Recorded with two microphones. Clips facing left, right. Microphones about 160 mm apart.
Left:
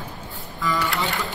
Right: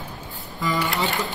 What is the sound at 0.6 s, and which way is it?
Speech, 20° right (ahead or behind).